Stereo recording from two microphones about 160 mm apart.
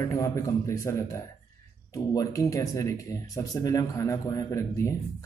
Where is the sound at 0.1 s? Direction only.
20° left (ahead or behind).